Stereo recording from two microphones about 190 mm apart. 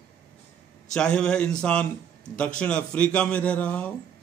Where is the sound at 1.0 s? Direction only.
5° left (ahead or behind).